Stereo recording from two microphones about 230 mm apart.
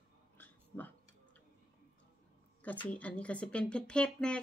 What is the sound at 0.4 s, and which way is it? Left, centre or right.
Dog, centre.